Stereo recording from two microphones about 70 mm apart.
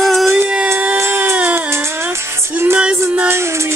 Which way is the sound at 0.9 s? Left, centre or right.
Right.